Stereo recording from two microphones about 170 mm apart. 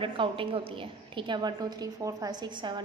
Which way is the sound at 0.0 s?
30° right (ahead or behind).